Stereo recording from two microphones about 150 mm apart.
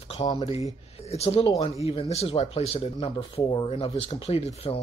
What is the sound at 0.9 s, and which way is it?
A man's voice, 45° left (ahead or behind).